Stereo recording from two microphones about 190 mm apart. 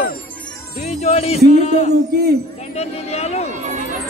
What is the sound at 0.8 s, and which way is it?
Speech, 35° left (ahead or behind).